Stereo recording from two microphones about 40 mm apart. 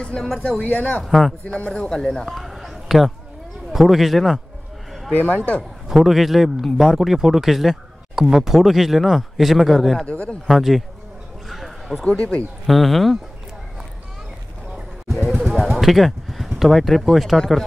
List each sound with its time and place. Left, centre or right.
0.4 s speech: left
1.0 s a man's voice: centre
1.8 s speech: centre
2.2 s a sound: centre
3.7 s a man's voice: centre
5.1 s speech: left
5.6 s a man's voice: centre
10.0 s speech: left
10.5 s a man's voice: centre
11.4 s a sound: centre
12.0 s speech: left
12.6 s a man's voice: centre
15.0 s a sound: centre
16.4 s speech: centre